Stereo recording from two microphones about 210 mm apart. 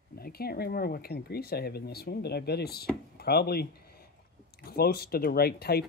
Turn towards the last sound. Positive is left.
turn(degrees=45)  # may be behind; listen again after turning